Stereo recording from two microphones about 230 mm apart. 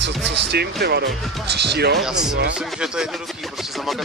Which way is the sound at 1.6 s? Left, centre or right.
Right.